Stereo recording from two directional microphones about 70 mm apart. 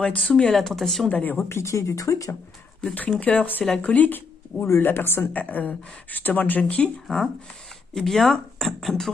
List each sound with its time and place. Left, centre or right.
0.0 s speech: centre
0.4 s speech: centre
1.0 s speech: left
1.5 s speech: left
3.2 s speech: centre
4.6 s speech: left
7.9 s speech: centre